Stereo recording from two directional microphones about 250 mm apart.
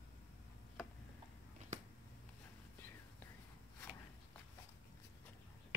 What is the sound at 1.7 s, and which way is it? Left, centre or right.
Finger snapping, right.